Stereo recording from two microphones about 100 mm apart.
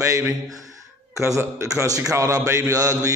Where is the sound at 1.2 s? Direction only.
30° right (ahead or behind).